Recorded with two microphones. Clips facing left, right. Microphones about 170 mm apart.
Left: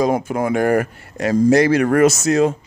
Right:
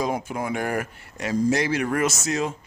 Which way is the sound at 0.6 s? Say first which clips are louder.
Left 10 dB; 55° left (ahead or behind).